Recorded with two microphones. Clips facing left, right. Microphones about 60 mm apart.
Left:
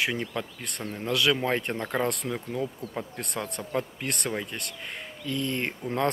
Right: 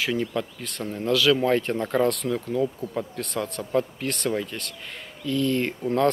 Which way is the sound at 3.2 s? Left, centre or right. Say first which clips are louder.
Right 4 dB; left.